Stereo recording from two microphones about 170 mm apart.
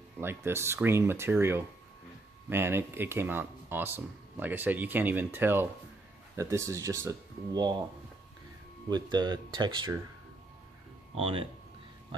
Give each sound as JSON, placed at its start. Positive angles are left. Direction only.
{"t": 0.2, "sound": "speech", "side_deg": -15}
{"t": 8.8, "sound": "speech", "side_deg": -25}
{"t": 11.1, "sound": "speech", "side_deg": -35}